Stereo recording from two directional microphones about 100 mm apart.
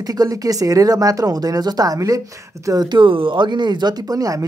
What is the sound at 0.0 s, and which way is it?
Speech, 40° right (ahead or behind).